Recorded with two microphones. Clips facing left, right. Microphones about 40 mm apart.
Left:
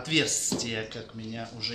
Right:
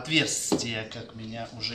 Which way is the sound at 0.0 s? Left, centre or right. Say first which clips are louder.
Right 1 dB; centre.